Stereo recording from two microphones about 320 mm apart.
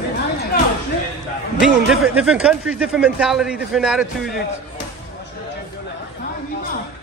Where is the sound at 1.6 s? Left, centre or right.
Centre.